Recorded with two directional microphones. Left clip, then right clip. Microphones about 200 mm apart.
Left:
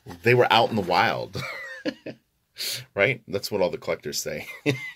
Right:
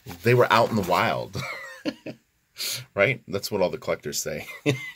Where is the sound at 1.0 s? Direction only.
50° right (ahead or behind).